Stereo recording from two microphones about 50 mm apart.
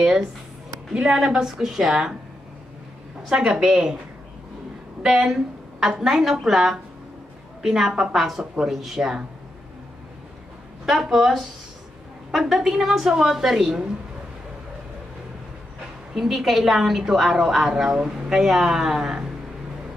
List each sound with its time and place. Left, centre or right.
1.0 s a woman's voice: centre
3.3 s a woman's voice: centre
5.0 s a woman's voice: centre
10.9 s a woman's voice: centre
16.2 s a woman's voice: centre